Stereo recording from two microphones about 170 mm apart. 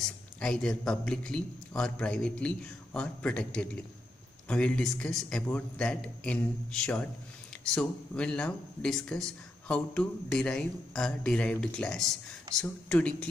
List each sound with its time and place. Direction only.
0.0 s a man's voice: 5° left (ahead or behind)